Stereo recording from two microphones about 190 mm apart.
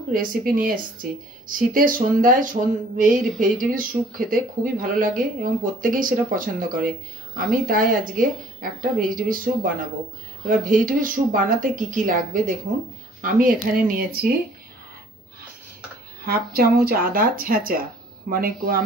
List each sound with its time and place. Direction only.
0.1 s speech: 45° right (ahead or behind)
16.3 s speech: 55° right (ahead or behind)